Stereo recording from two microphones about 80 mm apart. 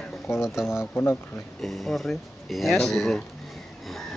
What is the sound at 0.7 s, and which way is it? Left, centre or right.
Speech, left.